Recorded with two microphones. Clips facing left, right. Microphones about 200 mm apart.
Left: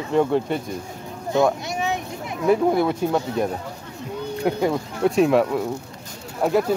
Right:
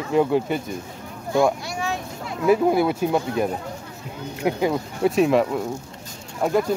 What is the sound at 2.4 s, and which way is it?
Speech, 5° right (ahead or behind).